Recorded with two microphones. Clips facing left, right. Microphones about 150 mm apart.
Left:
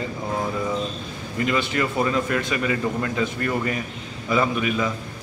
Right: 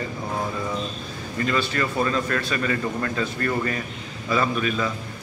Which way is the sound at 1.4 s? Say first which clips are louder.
Left 1 dB; 20° left (ahead or behind).